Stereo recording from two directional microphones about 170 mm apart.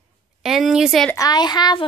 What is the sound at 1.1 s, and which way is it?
Speech, 25° left (ahead or behind).